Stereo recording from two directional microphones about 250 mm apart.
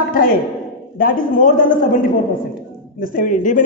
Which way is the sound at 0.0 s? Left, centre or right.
Left.